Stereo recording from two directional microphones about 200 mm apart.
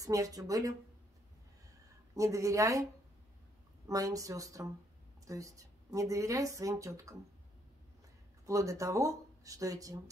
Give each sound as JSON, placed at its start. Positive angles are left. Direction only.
{"t": 0.0, "sound": "speech", "side_deg": -15}
{"t": 2.1, "sound": "speech", "side_deg": -15}
{"t": 3.8, "sound": "speech", "side_deg": -15}
{"t": 8.5, "sound": "speech", "side_deg": -15}